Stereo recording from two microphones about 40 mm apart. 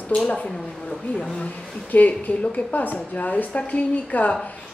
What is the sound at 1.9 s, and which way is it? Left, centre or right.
A woman's voice, left.